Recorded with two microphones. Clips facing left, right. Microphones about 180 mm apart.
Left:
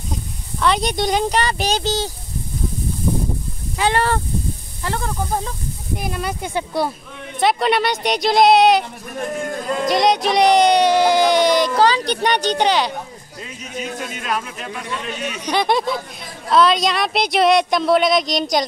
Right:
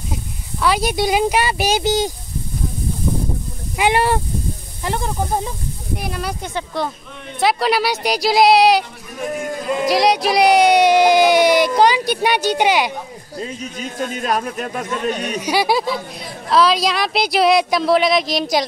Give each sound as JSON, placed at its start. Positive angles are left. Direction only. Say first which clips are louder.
{"t": 0.1, "sound": "speech", "louder": "left 1 dB", "side_deg": -5}
{"t": 3.7, "sound": "speech", "louder": "right 2 dB", "side_deg": -15}
{"t": 5.9, "sound": "speech", "louder": "left 1 dB", "side_deg": 0}
{"t": 6.5, "sound": "speech", "louder": "left 3 dB", "side_deg": 10}
{"t": 7.3, "sound": "speech", "louder": "even", "side_deg": 0}
{"t": 13.4, "sound": "speech", "louder": "right 3 dB", "side_deg": -35}
{"t": 15.4, "sound": "speech", "louder": "even", "side_deg": -5}